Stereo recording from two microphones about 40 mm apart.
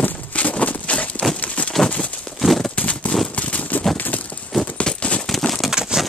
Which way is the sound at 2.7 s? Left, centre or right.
Left.